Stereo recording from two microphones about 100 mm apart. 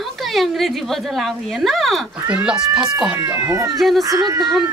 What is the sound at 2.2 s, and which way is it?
Speech, 10° right (ahead or behind).